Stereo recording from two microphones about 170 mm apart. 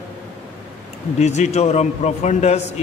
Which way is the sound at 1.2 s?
40° left (ahead or behind).